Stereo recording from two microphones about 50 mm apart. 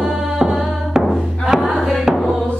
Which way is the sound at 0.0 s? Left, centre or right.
Centre.